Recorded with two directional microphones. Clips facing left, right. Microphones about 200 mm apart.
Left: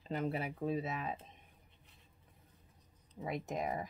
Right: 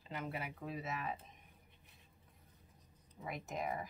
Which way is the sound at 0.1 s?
30° left (ahead or behind).